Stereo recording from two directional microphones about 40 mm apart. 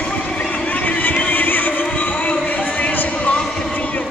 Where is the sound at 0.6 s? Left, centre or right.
Left.